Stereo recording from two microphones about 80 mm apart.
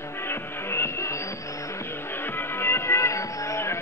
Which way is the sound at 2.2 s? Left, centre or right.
Left.